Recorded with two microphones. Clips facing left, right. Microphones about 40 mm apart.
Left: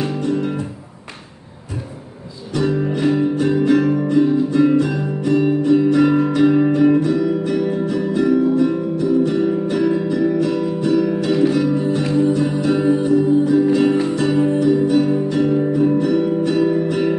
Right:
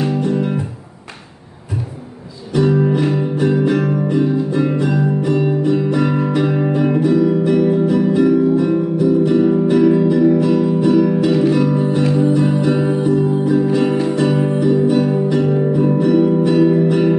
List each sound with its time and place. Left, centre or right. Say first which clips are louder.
2.5 s music: right 5 dB; centre
6.7 s music: even; centre